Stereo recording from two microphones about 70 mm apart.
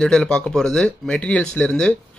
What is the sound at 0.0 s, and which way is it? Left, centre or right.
Speech, centre.